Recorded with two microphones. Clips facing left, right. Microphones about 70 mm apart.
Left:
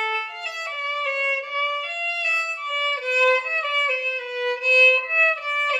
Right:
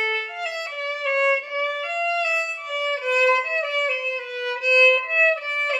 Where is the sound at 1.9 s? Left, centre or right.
Centre.